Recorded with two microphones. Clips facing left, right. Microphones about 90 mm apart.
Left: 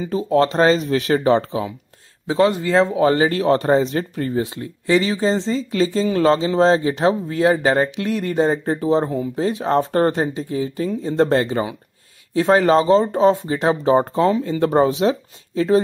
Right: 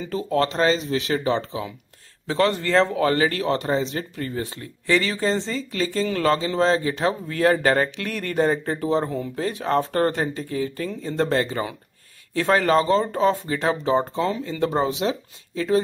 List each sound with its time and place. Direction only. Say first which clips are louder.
0.0 s speech: left 5 dB; 20° left (ahead or behind); by 1.7 s 40° left (ahead or behind)
2.2 s speech: left 4 dB; 15° left (ahead or behind)
3.0 s speech: left 4 dB; 25° left (ahead or behind)
4.4 s speech: left 7 dB; 20° left (ahead or behind)
5.7 s speech: left 5 dB; 30° left (ahead or behind)
13.8 s speech: left 8 dB; 40° left (ahead or behind)